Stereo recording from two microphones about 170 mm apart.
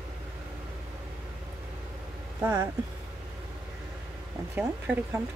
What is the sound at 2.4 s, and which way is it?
Speech, 15° right (ahead or behind).